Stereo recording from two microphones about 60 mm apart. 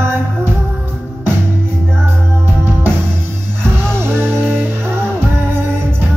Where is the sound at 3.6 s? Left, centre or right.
Right.